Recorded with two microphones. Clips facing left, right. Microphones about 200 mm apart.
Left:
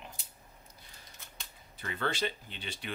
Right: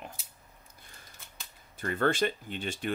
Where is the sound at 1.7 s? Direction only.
50° right (ahead or behind).